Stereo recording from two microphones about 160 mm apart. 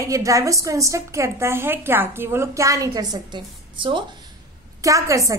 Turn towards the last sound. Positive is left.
turn(degrees=-20)  # may be behind; listen again after turning